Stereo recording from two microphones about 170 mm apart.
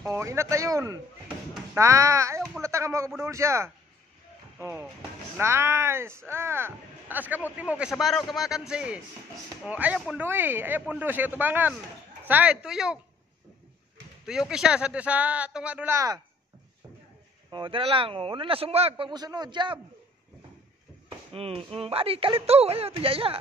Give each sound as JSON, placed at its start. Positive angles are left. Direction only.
{"t": 0.0, "sound": "a man's voice", "side_deg": -15}
{"t": 14.5, "sound": "speech", "side_deg": -5}
{"t": 17.5, "sound": "a man's voice", "side_deg": -30}
{"t": 21.3, "sound": "a man's voice", "side_deg": -35}